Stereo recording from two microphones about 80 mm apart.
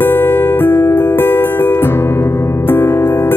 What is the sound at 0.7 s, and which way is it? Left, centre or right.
Music, left.